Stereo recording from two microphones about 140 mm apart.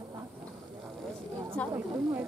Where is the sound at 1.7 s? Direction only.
15° right (ahead or behind).